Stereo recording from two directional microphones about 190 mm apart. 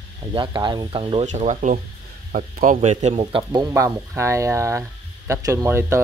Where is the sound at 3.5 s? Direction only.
15° right (ahead or behind).